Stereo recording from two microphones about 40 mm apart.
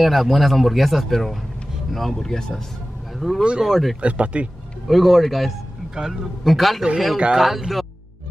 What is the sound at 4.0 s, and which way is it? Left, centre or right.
Speech, right.